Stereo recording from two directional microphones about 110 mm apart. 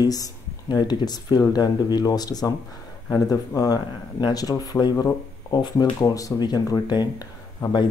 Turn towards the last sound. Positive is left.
turn(degrees=40)  # may be behind; listen again after turning